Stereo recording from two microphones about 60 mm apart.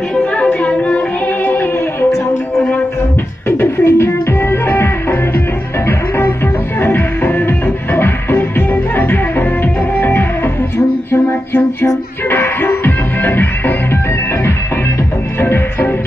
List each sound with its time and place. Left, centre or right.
0.1 s music: centre; by 2.0 s left
3.4 s music: left
11.1 s a sound: left
12.3 s music: left
15.4 s music: left